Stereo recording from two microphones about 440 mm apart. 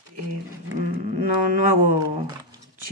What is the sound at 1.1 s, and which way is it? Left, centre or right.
Speech, right.